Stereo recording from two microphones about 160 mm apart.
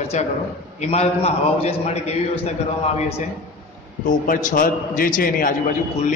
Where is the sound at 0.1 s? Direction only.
45° left (ahead or behind).